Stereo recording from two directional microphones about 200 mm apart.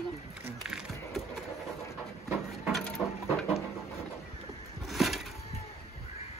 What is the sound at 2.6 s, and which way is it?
Mechanisms, centre (ahead or behind).